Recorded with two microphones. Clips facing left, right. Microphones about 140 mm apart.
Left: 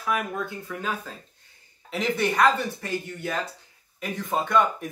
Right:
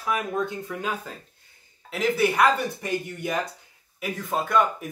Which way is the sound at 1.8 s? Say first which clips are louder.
Right 2 dB; centre (ahead or behind).